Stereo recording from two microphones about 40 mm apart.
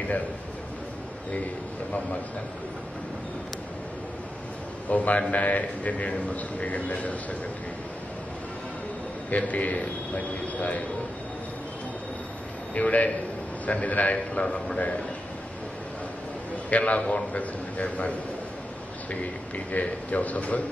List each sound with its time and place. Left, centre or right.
4.8 s a man's voice: left
9.3 s a man's voice: left
12.7 s a man's voice: left
14.1 s a man's voice: left
16.7 s a man's voice: left
19.7 s a man's voice: left